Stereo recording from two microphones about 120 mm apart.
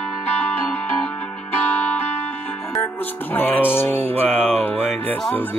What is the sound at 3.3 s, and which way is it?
Music, 15° left (ahead or behind).